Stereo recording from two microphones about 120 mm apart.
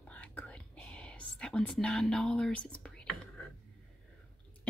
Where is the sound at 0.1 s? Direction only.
10° left (ahead or behind).